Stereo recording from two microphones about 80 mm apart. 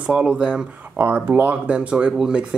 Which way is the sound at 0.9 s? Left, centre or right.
Right.